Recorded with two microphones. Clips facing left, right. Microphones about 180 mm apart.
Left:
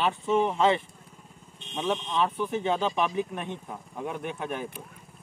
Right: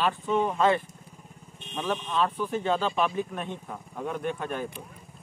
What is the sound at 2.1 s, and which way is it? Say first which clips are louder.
Speech: even; 15° left (ahead or behind).